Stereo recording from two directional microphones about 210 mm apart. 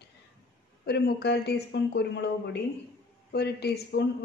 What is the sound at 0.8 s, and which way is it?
A man's voice, 50° left (ahead or behind).